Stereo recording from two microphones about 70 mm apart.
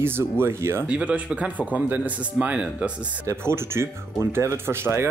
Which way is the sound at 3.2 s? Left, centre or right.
Right.